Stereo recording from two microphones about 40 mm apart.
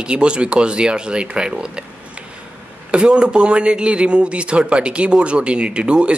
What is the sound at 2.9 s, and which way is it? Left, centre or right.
Speech, right.